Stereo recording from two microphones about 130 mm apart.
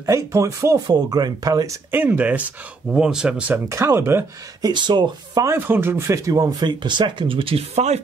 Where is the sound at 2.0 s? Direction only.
10° right (ahead or behind).